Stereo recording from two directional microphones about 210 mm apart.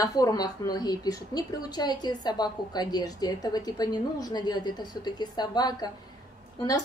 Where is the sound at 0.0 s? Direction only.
15° left (ahead or behind).